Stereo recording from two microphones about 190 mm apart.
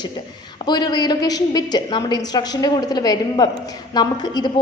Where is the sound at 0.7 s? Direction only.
20° left (ahead or behind).